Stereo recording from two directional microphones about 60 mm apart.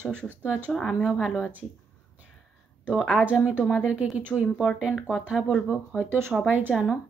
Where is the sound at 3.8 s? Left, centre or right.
Centre.